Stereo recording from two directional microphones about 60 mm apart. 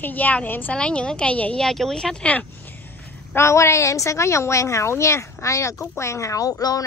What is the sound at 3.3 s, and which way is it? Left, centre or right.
Speech, left.